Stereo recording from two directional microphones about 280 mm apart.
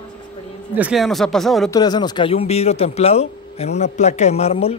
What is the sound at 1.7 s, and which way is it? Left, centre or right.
A man's voice, centre.